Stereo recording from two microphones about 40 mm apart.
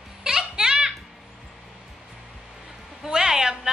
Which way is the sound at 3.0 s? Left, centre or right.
Centre.